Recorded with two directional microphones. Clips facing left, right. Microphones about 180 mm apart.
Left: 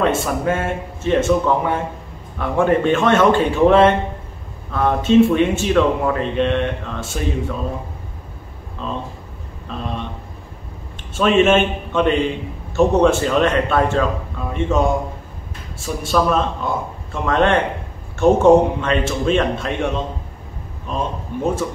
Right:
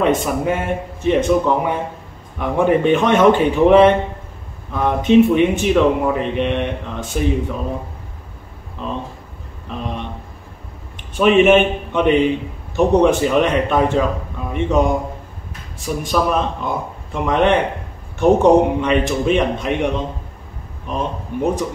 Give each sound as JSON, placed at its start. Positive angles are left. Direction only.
{"t": 0.0, "sound": "speech", "side_deg": -15}
{"t": 8.8, "sound": "speech", "side_deg": -15}
{"t": 11.1, "sound": "speech", "side_deg": -15}